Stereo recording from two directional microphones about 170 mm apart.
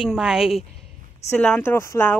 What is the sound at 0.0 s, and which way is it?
Speech, centre (ahead or behind).